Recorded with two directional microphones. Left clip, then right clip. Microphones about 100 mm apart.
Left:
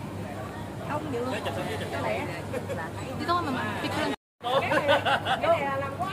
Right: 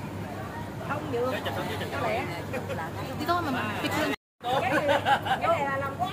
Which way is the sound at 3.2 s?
40° right (ahead or behind).